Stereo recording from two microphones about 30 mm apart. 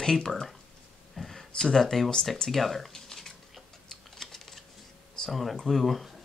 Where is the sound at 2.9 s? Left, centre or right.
Centre.